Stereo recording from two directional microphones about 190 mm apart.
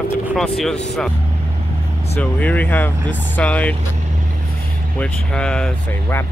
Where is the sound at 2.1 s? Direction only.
10° left (ahead or behind).